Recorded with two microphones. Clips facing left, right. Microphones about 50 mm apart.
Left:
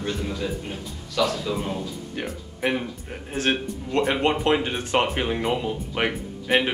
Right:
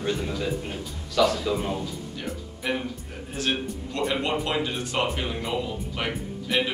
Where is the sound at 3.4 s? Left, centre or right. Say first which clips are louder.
Left 3 dB; left.